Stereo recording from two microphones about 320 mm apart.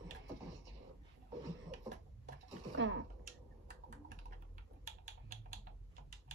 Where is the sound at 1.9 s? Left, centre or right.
Right.